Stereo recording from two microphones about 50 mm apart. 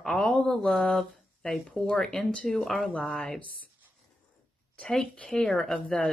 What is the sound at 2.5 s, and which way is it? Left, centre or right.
Speech, centre.